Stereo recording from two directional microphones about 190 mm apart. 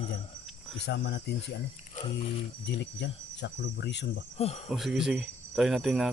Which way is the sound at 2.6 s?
65° left (ahead or behind).